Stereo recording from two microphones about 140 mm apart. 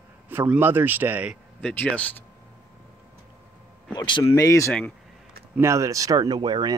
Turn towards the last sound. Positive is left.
turn(degrees=-30)  # may be behind; listen again after turning